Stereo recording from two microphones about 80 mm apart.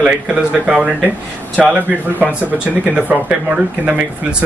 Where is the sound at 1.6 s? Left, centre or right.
Centre.